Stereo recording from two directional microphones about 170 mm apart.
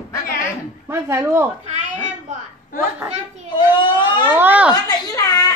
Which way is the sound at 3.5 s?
30° left (ahead or behind).